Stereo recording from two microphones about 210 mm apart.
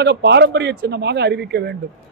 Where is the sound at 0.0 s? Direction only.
55° right (ahead or behind).